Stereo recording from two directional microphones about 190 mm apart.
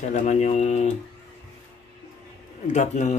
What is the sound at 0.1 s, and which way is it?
Mantra, 40° left (ahead or behind).